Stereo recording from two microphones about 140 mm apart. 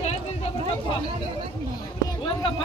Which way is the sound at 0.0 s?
50° left (ahead or behind).